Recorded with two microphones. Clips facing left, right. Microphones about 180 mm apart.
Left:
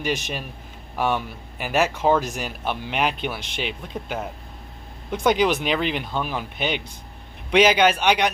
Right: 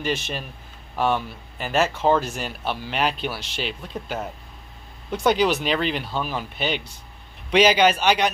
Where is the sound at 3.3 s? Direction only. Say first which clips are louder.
Even; 55° left (ahead or behind).